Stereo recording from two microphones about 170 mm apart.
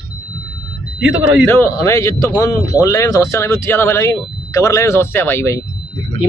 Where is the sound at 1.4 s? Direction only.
15° left (ahead or behind).